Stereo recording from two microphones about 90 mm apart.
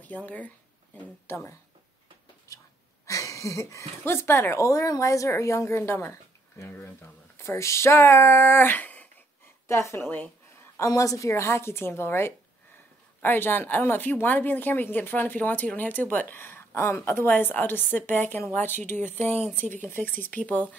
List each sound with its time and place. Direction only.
0.0 s speech: 15° left (ahead or behind)
1.2 s a woman's voice: 25° left (ahead or behind)
3.1 s speech: 35° left (ahead or behind)
7.3 s a woman's voice: 30° left (ahead or behind)
9.7 s a woman's voice: 30° left (ahead or behind)
10.8 s a woman's voice: 40° left (ahead or behind); by 20.6 s 15° left (ahead or behind)